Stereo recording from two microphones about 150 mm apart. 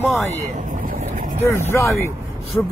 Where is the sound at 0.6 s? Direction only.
60° right (ahead or behind).